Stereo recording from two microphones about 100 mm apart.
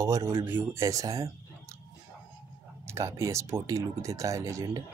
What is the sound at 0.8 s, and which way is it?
Speech, 35° right (ahead or behind).